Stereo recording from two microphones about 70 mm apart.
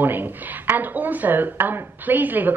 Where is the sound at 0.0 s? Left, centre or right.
Right.